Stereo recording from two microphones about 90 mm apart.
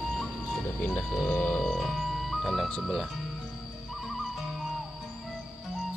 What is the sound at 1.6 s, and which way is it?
Music, centre (ahead or behind).